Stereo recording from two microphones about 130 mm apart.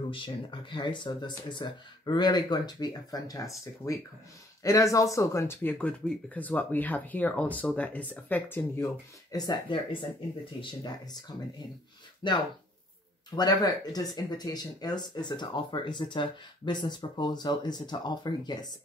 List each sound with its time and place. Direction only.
0.1 s speech: 40° left (ahead or behind); by 9.4 s 20° left (ahead or behind)
9.4 s speech: 30° left (ahead or behind)
12.2 s speech: 35° left (ahead or behind)